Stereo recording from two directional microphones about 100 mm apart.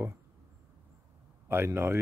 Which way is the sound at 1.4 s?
25° right (ahead or behind).